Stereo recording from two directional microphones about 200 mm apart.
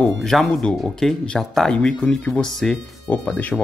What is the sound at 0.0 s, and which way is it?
Speech, centre (ahead or behind).